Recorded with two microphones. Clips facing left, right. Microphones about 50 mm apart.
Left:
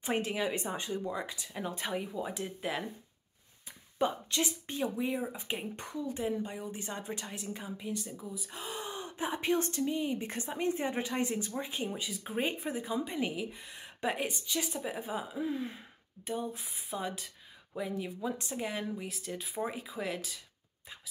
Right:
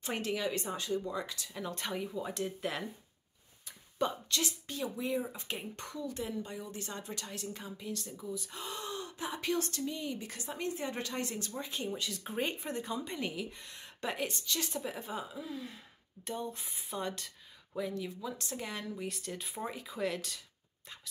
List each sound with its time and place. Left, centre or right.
0.0 s speech: left
3.6 s a woman's voice: centre
15.3 s speech: left
16.3 s speech: centre
18.9 s speech: centre